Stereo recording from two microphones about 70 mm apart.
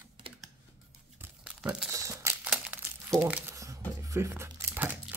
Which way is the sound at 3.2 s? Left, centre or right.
Right.